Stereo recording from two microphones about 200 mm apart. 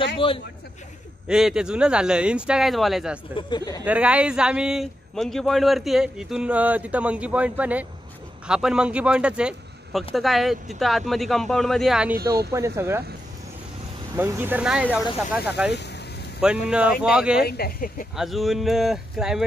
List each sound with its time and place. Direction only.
0.2 s speech: 25° left (ahead or behind)
1.2 s a man's voice: 5° right (ahead or behind)
3.3 s speech: 20° left (ahead or behind)
3.8 s a man's voice: 5° right (ahead or behind)
14.1 s a man's voice: 10° right (ahead or behind)
17.4 s speech: 50° left (ahead or behind)
18.1 s a man's voice: centre (ahead or behind)